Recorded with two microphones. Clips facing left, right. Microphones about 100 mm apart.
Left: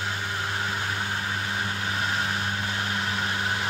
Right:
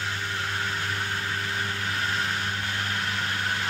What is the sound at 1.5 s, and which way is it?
Vehicle, 20° left (ahead or behind).